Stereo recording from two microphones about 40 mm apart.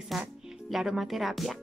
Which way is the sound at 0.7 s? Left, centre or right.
Centre.